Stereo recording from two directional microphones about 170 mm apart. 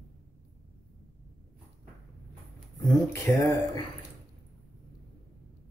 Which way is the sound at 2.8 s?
15° left (ahead or behind).